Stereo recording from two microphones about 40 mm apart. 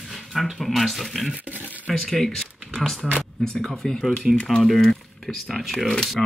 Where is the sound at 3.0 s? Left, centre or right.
Centre.